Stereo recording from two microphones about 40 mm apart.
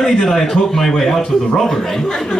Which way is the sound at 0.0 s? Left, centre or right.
Centre.